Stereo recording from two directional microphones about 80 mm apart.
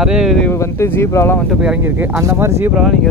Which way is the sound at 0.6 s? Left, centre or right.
Left.